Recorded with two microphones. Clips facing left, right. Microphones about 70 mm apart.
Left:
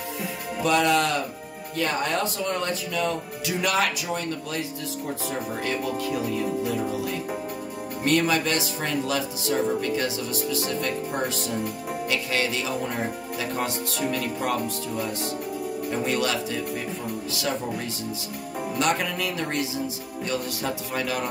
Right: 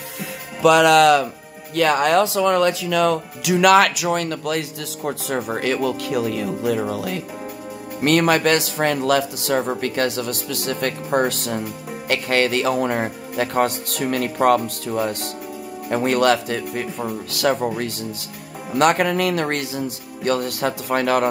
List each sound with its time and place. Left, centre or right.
0.6 s speech: right